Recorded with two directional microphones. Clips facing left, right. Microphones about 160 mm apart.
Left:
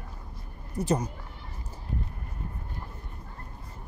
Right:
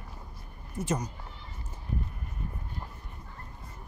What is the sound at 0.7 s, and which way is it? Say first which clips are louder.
Speech: left 4 dB; 35° left (ahead or behind).